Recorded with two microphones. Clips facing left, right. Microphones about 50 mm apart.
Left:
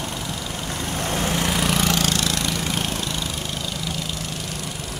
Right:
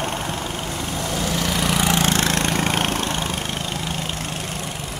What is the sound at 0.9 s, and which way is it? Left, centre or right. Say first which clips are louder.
Vehicle: left 1 dB; left.